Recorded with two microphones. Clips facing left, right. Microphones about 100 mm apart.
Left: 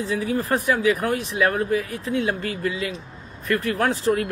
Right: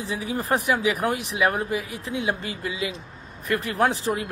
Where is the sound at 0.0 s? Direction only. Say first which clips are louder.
Left 4 dB; 15° right (ahead or behind).